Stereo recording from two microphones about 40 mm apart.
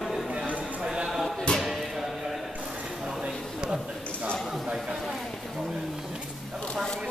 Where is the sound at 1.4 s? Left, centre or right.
Centre.